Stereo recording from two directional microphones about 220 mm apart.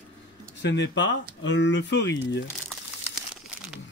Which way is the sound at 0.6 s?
50° left (ahead or behind).